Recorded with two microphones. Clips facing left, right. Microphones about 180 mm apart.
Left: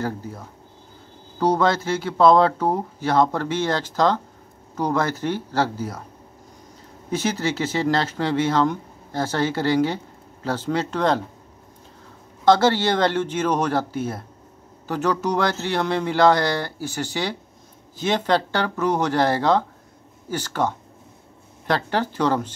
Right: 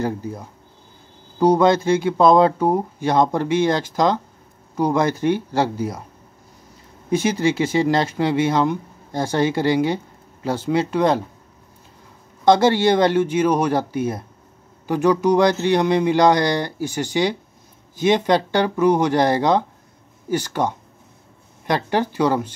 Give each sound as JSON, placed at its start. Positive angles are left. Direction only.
{"t": 0.0, "sound": "speech", "side_deg": -15}
{"t": 7.1, "sound": "speech", "side_deg": -15}
{"t": 12.4, "sound": "speech", "side_deg": -15}